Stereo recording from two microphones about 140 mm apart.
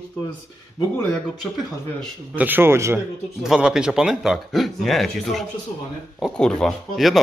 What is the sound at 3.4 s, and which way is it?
Speech, 5° right (ahead or behind).